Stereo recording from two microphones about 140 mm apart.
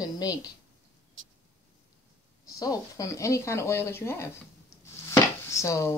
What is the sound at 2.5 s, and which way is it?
Speech, 20° left (ahead or behind).